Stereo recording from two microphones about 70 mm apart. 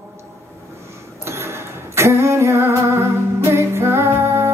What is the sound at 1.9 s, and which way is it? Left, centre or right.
Female singing, right.